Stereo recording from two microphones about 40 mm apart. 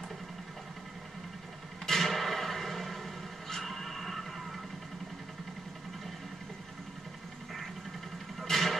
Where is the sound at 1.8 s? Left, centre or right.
Centre.